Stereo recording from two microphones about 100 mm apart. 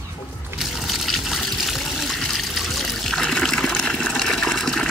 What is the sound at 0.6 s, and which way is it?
Water, centre (ahead or behind).